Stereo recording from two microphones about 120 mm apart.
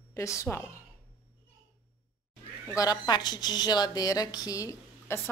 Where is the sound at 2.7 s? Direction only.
30° left (ahead or behind).